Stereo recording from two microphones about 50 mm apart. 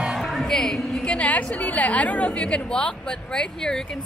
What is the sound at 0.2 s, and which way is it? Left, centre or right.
Music, centre.